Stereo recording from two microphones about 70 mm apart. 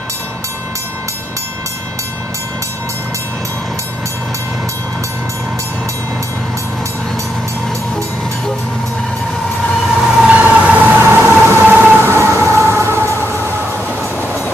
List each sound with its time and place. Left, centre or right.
9.9 s vehicle: centre; by 11.6 s right
11.6 s train: right
12.0 s train: right